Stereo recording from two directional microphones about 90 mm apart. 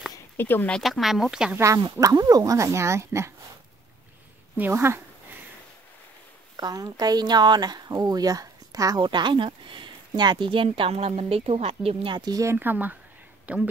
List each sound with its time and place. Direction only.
0.4 s speech: 25° left (ahead or behind)
0.8 s speech: centre (ahead or behind)
1.6 s speech: 35° right (ahead or behind)
4.6 s speech: 25° right (ahead or behind)
6.5 s speech: 45° right (ahead or behind)
9.0 s speech: 60° right (ahead or behind); by 12.2 s 85° right
12.2 s speech: 45° right (ahead or behind)
12.4 s speech: 20° right (ahead or behind)